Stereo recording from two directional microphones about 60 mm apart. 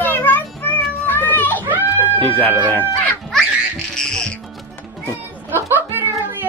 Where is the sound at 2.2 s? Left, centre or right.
Left.